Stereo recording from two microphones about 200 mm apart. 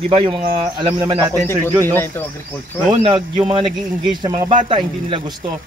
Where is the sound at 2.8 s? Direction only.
30° right (ahead or behind).